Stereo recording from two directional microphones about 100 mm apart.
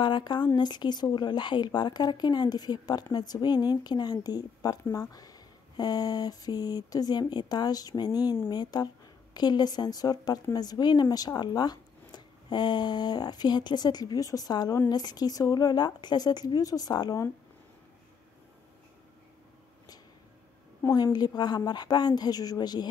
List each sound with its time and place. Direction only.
0.0 s speech: 50° left (ahead or behind)
20.9 s speech: 45° left (ahead or behind)